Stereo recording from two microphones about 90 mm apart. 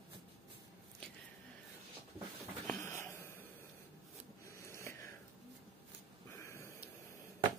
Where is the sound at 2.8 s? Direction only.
30° left (ahead or behind).